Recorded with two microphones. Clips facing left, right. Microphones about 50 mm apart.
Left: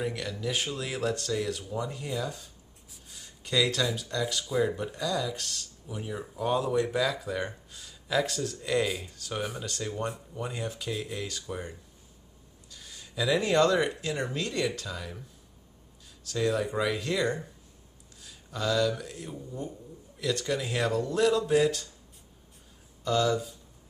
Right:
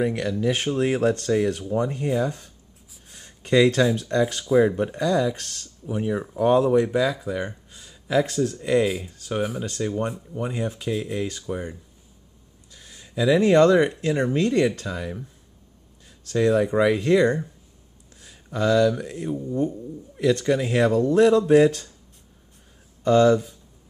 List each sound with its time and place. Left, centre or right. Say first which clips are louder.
0.0 s speech: right 9 dB; right
6.8 s speech: right 6 dB; centre
7.7 s a sound: right 7 dB; right
8.3 s speech: right 9 dB; right
8.5 s speech: right 6 dB; right
8.8 s speech: right 7 dB; centre
9.1 s speech: right 7 dB; right
9.4 s speech: right 8 dB; centre
10.3 s speech: right 7 dB; right
10.9 s speech: right 8 dB; centre
11.1 s speech: right 8 dB; right
11.4 s speech: right 7 dB; centre; by 21.9 s right
23.0 s speech: right 10 dB; right